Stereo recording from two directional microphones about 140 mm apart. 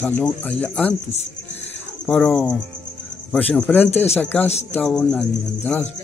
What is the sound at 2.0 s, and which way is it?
Speech, 10° left (ahead or behind).